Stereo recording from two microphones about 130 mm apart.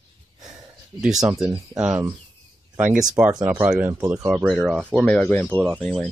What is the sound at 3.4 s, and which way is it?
Speech, 10° right (ahead or behind).